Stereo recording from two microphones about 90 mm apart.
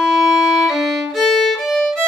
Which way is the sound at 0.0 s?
Centre (ahead or behind).